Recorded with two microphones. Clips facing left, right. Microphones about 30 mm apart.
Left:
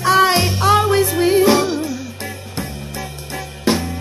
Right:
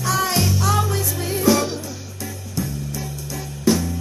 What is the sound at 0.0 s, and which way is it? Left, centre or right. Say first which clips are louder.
Music: left 7 dB; left.